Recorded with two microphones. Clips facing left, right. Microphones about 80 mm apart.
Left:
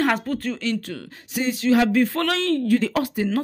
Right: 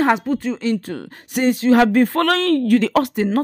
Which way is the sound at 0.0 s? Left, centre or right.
Centre.